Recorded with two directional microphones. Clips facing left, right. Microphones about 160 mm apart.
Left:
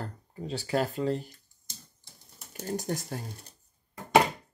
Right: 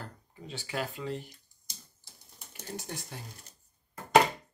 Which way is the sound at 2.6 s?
40° left (ahead or behind).